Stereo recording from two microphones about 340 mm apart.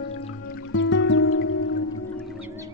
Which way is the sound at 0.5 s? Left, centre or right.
Left.